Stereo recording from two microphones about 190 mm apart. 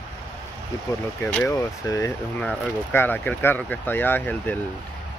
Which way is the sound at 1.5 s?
20° left (ahead or behind).